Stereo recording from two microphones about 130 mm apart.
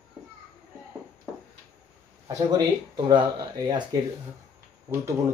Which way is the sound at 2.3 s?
30° right (ahead or behind).